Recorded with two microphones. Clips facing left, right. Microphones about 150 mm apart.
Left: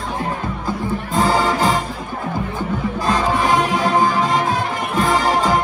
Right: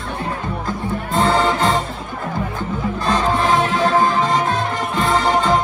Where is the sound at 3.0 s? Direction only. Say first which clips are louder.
Even; centre (ahead or behind).